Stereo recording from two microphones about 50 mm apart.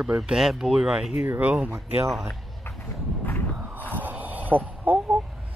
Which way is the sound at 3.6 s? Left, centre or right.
Right.